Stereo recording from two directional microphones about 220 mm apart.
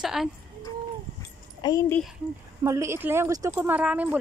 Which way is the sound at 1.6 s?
15° left (ahead or behind).